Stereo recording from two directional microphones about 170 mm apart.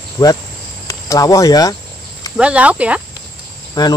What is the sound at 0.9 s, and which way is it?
Speech, 20° left (ahead or behind).